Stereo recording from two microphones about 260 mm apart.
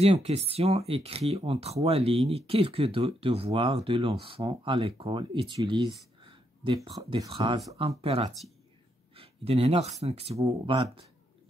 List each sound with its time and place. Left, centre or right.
0.0 s speech: right
6.2 s a sound: centre
7.0 s speech: centre